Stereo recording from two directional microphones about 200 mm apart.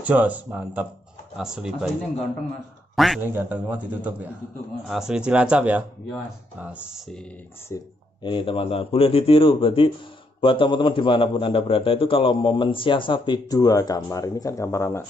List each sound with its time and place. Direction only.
0.0 s a man's voice: 10° right (ahead or behind)
3.2 s a man's voice: 10° right (ahead or behind)
7.6 s a man's voice: 20° left (ahead or behind)